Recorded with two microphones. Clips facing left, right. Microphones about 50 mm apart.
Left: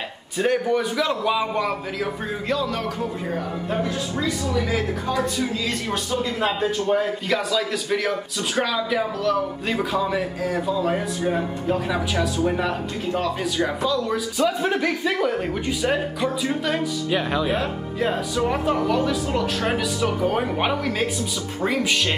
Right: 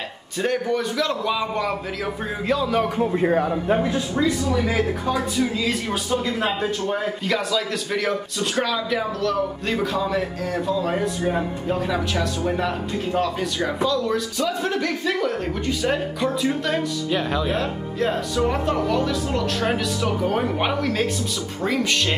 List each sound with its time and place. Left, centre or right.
0.4 s speech: centre
3.0 s a man's voice: right
3.7 s speech: right
5.4 s a man's voice: centre
14.4 s speech: centre